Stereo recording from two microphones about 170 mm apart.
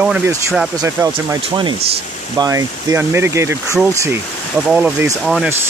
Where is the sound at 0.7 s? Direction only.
20° right (ahead or behind).